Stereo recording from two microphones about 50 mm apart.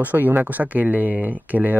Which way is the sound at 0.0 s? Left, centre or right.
Right.